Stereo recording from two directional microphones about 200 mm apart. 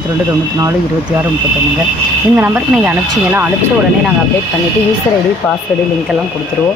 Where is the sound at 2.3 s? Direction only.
10° right (ahead or behind).